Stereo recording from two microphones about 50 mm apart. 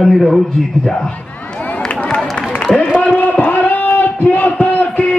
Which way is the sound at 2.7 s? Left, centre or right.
Left.